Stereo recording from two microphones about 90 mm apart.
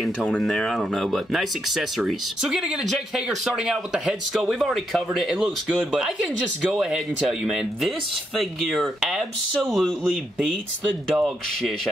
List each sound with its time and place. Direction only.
0.4 s speech: centre (ahead or behind)
11.2 s speech: centre (ahead or behind)